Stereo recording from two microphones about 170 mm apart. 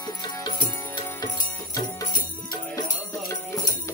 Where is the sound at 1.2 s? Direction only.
20° left (ahead or behind).